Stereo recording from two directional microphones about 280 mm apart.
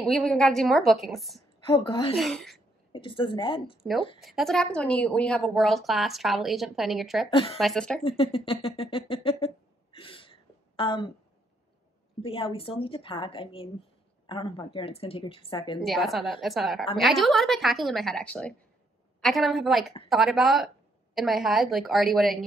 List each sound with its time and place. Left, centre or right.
0.0 s a woman's voice: centre
1.7 s speech: centre
2.1 s a woman's voice: centre
2.9 s speech: centre
4.2 s a woman's voice: centre
7.2 s speech: centre
7.5 s a woman's voice: centre
8.0 s speech: centre
9.9 s a sound: centre
12.2 s speech: centre
15.8 s a woman's voice: centre